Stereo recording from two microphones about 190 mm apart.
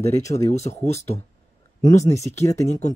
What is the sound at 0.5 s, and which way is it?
Speech, 35° left (ahead or behind).